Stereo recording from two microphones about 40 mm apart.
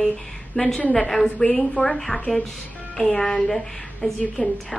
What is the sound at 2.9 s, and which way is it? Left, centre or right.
A woman's voice, left.